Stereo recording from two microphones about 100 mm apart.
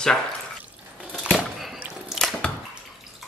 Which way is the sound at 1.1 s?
10° left (ahead or behind).